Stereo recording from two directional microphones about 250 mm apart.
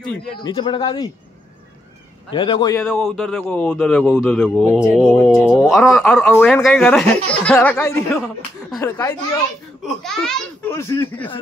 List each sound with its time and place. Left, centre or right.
0.4 s a child's voice: centre
2.3 s a man's voice: centre
2.8 s a man's voice: centre